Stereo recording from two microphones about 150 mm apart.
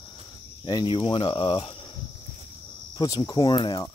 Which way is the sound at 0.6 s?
30° left (ahead or behind).